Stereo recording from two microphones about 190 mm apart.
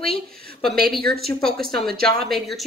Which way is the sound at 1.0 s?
55° right (ahead or behind).